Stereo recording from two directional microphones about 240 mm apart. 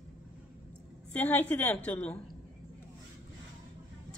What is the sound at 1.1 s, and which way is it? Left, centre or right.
A woman's voice, centre.